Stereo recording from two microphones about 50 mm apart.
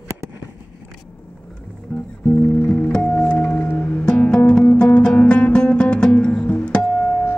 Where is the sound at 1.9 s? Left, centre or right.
Left.